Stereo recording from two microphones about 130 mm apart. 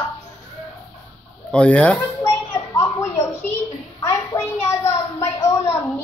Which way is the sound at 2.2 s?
20° left (ahead or behind).